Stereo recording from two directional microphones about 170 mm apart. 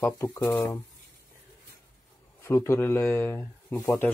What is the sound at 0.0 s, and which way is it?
Speech, 15° left (ahead or behind).